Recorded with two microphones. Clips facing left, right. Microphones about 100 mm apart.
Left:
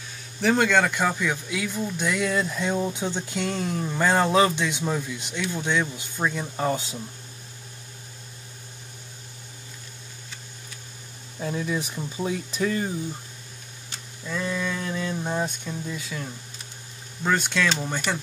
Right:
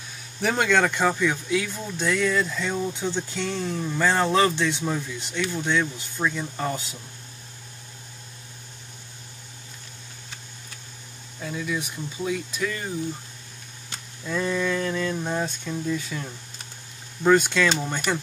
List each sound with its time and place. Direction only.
0.4 s speech: centre (ahead or behind)
2.3 s music: 20° left (ahead or behind)
2.9 s speech: 15° left (ahead or behind)
11.3 s speech: 30° left (ahead or behind)
14.2 s speech: centre (ahead or behind)
14.7 s music: 20° left (ahead or behind)
15.2 s speech: 10° left (ahead or behind)
16.1 s speech: centre (ahead or behind)